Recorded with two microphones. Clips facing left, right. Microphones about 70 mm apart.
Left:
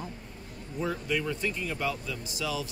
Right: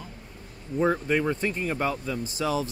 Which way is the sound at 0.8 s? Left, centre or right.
Right.